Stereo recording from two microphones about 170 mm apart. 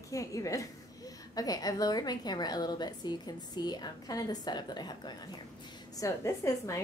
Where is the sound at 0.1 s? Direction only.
20° left (ahead or behind).